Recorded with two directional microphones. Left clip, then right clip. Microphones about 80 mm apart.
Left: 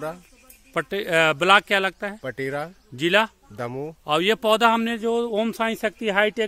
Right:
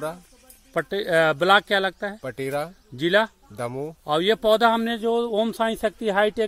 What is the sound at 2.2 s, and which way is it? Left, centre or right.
Speech, left.